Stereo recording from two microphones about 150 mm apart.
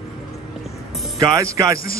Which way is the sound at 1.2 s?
20° right (ahead or behind).